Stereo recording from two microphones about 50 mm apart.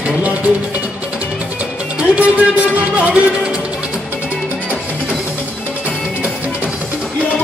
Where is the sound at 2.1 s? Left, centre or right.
Right.